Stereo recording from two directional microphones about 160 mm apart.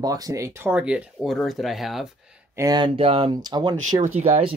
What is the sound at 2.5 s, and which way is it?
Speech, 20° right (ahead or behind).